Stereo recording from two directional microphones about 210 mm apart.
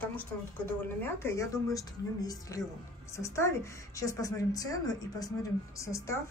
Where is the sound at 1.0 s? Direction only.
10° left (ahead or behind).